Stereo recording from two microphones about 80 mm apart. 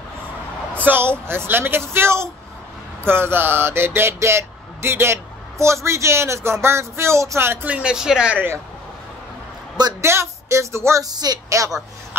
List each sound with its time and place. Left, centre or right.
0.7 s speech: right
7.6 s speech: centre
10.0 s speech: right
11.1 s speech: right